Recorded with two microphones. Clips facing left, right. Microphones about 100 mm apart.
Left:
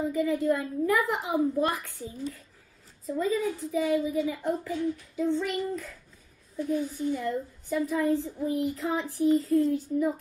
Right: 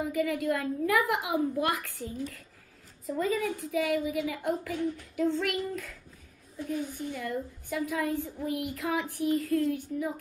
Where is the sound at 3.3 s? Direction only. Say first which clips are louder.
Left 2 dB; 90° right.